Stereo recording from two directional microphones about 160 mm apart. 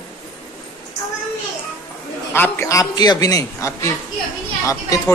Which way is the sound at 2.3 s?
15° left (ahead or behind).